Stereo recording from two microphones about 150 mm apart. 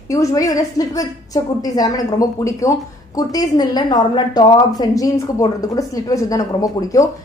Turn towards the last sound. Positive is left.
turn(degrees=25)  # may be behind; listen again after turning